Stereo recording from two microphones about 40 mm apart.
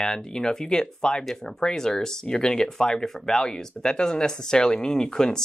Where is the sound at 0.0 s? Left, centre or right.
Centre.